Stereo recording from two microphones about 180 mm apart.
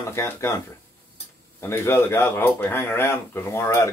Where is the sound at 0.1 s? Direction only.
15° left (ahead or behind).